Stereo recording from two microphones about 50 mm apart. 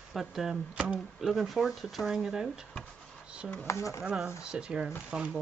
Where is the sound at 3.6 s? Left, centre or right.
Left.